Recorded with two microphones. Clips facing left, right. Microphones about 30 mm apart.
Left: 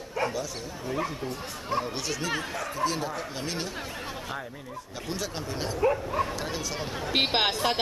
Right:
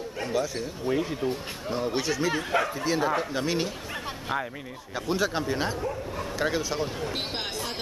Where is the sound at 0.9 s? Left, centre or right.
Right.